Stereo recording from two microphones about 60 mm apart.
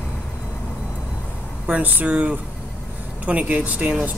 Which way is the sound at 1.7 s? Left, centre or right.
Right.